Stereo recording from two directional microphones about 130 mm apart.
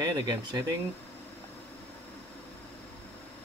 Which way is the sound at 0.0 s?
35° right (ahead or behind).